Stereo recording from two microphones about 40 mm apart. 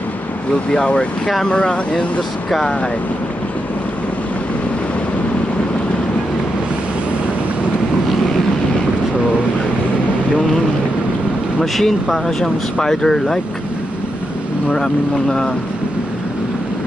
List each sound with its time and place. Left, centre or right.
0.7 s speech: left
11.6 s speech: centre
14.7 s speech: centre